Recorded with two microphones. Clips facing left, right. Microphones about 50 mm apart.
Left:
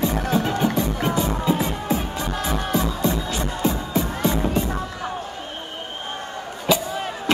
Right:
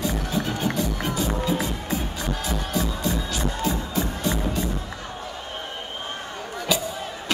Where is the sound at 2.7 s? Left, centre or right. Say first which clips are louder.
Left 3 dB; left.